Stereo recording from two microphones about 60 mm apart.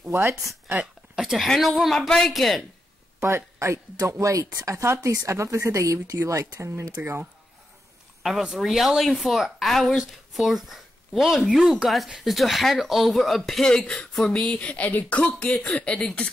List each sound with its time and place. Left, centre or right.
0.1 s speech: right
1.1 s speech: centre
2.0 s a woman's voice: centre
3.2 s speech: right
4.8 s speech: right
5.1 s speech: right
8.2 s a woman's voice: centre